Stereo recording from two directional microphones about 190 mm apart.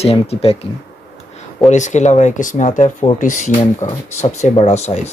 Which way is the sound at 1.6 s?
40° left (ahead or behind).